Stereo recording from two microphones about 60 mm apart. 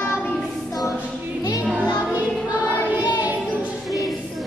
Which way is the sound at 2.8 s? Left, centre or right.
Right.